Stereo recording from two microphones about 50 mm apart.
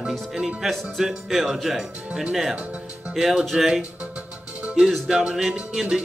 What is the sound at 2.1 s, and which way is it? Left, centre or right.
Speech, centre.